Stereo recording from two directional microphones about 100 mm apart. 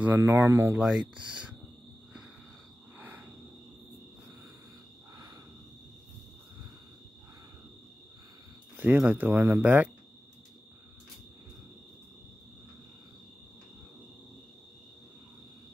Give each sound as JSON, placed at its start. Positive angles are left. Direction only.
{"t": 0.0, "sound": "speech", "side_deg": -20}
{"t": 0.7, "sound": "speech", "side_deg": -10}
{"t": 3.0, "sound": "a sound", "side_deg": -20}
{"t": 5.1, "sound": "cricket", "side_deg": -40}
{"t": 8.7, "sound": "speech", "side_deg": -15}